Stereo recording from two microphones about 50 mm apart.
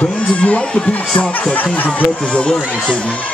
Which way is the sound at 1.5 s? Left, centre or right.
Left.